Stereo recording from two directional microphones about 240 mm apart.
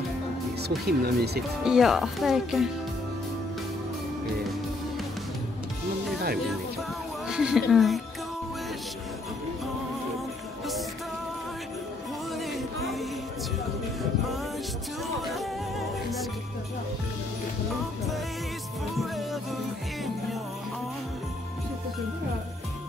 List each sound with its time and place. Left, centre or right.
0.6 s speech: right
1.6 s speech: centre
7.2 s speech: centre
12.4 s music: centre